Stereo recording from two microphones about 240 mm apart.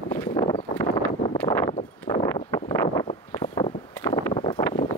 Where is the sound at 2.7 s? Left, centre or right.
Centre.